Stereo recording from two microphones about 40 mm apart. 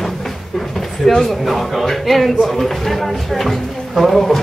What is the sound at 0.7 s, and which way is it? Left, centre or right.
Speech, centre.